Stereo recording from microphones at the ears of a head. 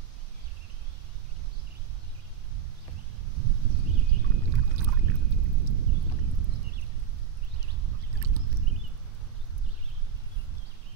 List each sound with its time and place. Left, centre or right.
3.3 s boat: right
7.8 s rowboat: right